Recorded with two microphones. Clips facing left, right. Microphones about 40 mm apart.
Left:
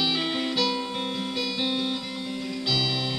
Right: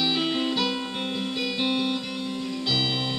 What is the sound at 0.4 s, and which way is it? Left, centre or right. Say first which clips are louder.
Music: even; right.